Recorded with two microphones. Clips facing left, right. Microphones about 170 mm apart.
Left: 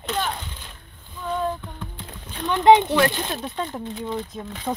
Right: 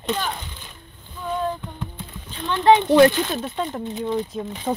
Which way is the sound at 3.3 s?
Centre (ahead or behind).